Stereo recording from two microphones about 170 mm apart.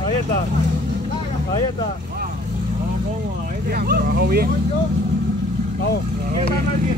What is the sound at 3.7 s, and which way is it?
Speech, 65° right (ahead or behind).